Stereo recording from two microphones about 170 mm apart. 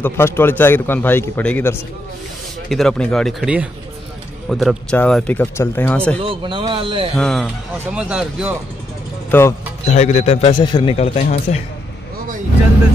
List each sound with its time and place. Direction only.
0.0 s a man's voice: 10° left (ahead or behind)
6.2 s speech: 30° right (ahead or behind)
7.2 s speech: centre (ahead or behind)
9.3 s a man's voice: 10° left (ahead or behind)
9.8 s a man's voice: 40° left (ahead or behind)
11.0 s a man's voice: 40° left (ahead or behind)